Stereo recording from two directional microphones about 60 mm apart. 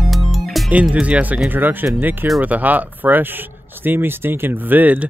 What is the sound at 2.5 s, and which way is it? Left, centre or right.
Speech, right.